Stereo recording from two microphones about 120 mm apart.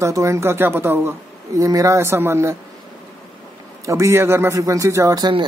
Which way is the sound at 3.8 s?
25° right (ahead or behind).